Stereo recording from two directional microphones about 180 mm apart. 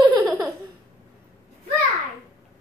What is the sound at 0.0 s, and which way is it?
Laughter, 10° right (ahead or behind).